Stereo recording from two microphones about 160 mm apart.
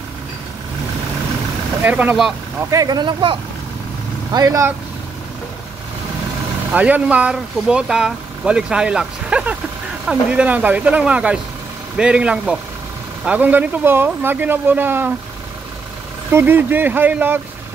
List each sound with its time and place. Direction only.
1.8 s speech: 10° right (ahead or behind)
2.7 s speech: 25° right (ahead or behind)
6.7 s speech: 10° right (ahead or behind)
16.3 s speech: 15° right (ahead or behind)